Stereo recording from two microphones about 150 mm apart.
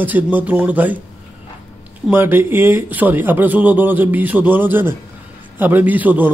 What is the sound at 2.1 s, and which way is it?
Speech, 15° right (ahead or behind).